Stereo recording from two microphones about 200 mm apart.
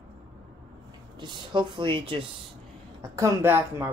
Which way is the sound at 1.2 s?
25° right (ahead or behind).